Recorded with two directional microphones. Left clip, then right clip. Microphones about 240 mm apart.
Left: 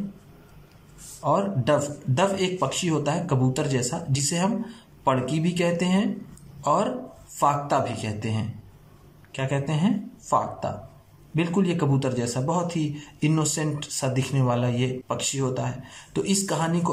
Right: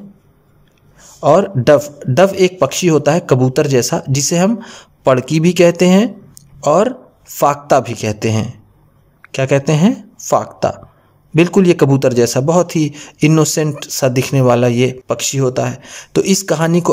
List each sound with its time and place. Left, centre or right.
1.2 s a man's voice: right